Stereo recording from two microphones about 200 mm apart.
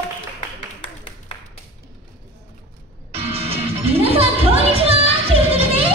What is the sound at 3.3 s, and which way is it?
Music, 30° right (ahead or behind).